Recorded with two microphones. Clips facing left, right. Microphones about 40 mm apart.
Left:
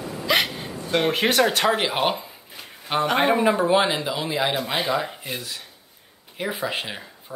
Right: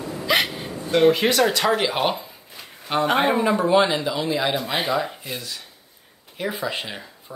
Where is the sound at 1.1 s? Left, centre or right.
Left.